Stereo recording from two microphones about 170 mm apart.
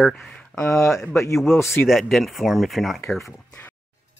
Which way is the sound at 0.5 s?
15° left (ahead or behind).